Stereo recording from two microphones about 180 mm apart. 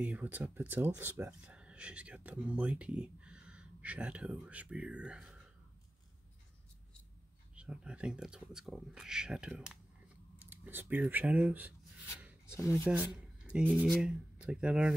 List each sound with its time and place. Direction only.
0.0 s speech: 10° right (ahead or behind)
7.5 s speech: 5° right (ahead or behind)
12.2 s rub: 10° right (ahead or behind)
12.5 s speech: 15° left (ahead or behind)
12.8 s speech: 5° right (ahead or behind)